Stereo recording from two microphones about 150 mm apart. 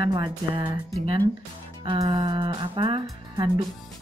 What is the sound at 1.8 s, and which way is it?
Speech, 30° right (ahead or behind).